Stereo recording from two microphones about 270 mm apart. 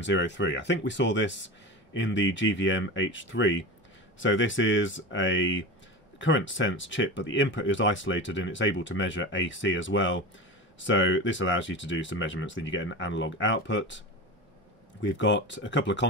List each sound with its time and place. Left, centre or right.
0.0 s speech: left